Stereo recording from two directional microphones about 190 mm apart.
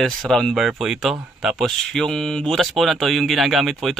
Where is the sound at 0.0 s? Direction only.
Centre (ahead or behind).